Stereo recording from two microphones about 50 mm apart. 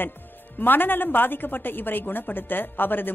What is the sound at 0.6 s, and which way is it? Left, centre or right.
A woman's voice, left.